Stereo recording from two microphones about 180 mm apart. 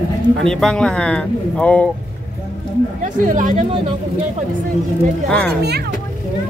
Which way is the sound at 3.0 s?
45° right (ahead or behind).